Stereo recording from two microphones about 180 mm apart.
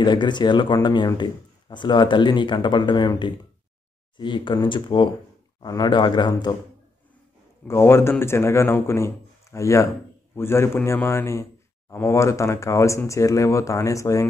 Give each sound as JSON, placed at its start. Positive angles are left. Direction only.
{"t": 0.0, "sound": "speech", "side_deg": 25}
{"t": 7.6, "sound": "speech", "side_deg": 15}